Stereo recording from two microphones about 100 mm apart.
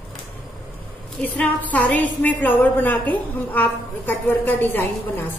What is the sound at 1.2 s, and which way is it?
A woman's voice, 10° left (ahead or behind).